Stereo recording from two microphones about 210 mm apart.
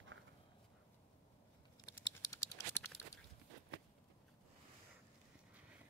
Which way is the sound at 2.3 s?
10° left (ahead or behind).